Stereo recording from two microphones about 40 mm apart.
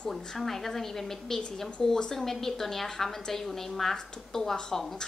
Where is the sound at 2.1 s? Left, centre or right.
Centre.